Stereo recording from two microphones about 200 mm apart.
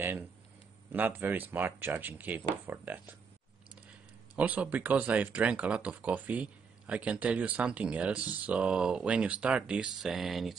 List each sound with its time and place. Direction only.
0.9 s speech: 10° right (ahead or behind)
4.4 s speech: 10° right (ahead or behind)